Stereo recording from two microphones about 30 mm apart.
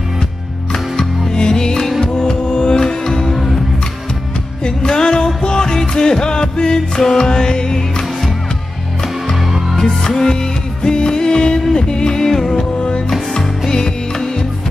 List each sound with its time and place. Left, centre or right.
0.9 s music: left
4.6 s music: left
9.8 s music: centre
12.3 s music: centre
12.5 s music: left
13.7 s music: centre